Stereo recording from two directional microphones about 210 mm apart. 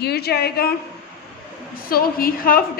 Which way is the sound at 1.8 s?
45° left (ahead or behind).